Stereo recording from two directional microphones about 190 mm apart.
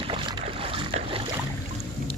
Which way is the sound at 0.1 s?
30° right (ahead or behind).